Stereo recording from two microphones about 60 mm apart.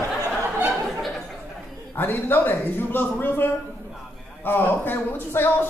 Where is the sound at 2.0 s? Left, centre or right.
Left.